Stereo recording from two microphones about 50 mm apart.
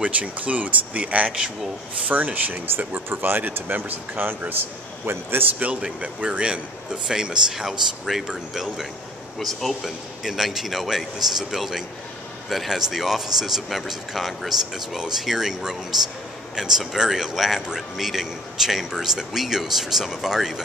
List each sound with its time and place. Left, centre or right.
0.0 s a man's voice: right
5.6 s a man's voice: right; by 8.3 s centre
9.4 s a man's voice: centre